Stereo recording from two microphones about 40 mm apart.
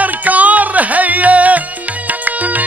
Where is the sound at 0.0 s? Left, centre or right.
Right.